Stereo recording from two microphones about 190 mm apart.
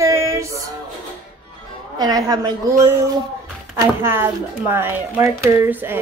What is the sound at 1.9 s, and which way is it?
A woman's voice, 20° right (ahead or behind).